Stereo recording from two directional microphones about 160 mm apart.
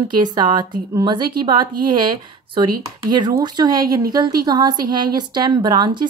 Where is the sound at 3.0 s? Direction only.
25° right (ahead or behind).